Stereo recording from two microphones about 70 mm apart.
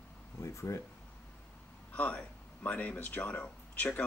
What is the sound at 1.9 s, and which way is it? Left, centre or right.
Speech, centre.